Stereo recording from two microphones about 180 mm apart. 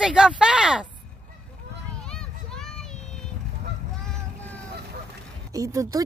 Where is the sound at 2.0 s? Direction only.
5° left (ahead or behind).